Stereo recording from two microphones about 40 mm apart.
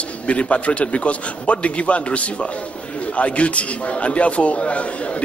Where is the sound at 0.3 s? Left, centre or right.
Left.